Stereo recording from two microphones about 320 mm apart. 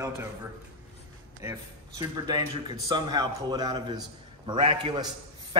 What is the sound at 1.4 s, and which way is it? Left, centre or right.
A man's voice, centre.